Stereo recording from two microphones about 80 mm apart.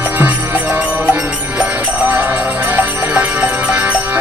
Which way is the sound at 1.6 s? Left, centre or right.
Centre.